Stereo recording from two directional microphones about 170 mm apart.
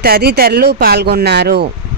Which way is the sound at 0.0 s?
70° right (ahead or behind).